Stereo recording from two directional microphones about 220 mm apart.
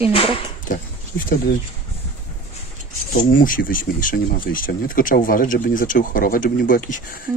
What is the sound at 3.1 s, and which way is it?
Speech, 40° left (ahead or behind).